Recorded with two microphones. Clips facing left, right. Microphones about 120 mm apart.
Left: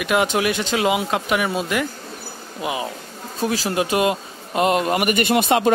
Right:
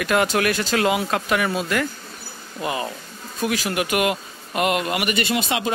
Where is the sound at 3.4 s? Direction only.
30° left (ahead or behind); by 5.7 s 50° left (ahead or behind).